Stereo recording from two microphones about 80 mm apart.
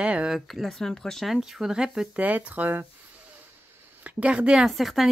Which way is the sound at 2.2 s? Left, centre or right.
Right.